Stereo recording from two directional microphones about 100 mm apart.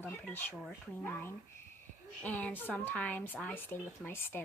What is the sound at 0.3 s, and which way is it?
Speech, 20° left (ahead or behind).